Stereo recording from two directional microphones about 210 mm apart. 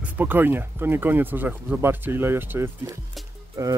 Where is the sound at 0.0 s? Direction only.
10° right (ahead or behind).